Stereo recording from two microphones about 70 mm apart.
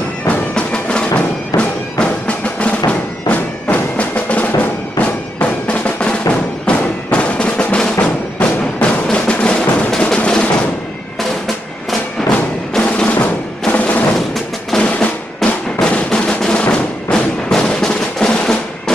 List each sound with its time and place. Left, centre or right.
0.3 s music: centre
3.7 s music: centre
12.8 s music: centre
14.8 s drum: centre
17.5 s music: centre